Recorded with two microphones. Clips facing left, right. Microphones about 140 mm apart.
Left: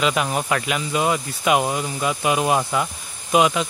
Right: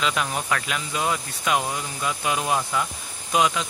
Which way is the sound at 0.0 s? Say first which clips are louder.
Left 4 dB; 10° left (ahead or behind).